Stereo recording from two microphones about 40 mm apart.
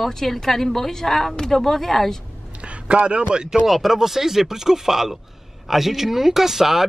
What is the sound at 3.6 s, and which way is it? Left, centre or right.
A woman's voice, centre.